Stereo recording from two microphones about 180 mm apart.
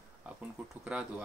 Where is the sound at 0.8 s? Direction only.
5° right (ahead or behind).